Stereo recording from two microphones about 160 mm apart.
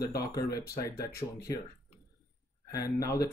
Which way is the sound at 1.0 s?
70° left (ahead or behind).